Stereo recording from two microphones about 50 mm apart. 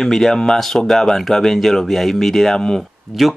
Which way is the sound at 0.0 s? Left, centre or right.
Centre.